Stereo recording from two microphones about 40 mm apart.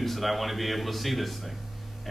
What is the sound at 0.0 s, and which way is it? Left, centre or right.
Speech, centre.